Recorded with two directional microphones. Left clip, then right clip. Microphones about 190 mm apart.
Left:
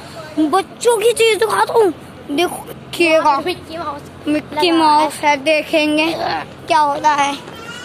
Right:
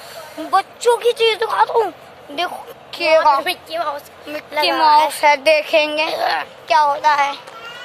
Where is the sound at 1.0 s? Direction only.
15° left (ahead or behind).